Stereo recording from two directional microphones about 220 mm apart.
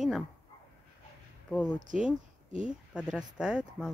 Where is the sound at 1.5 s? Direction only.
5° left (ahead or behind).